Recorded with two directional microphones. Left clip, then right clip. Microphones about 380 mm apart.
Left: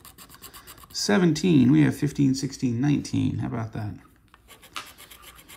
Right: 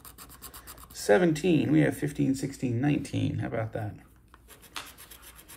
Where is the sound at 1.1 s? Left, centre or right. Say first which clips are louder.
Even; centre.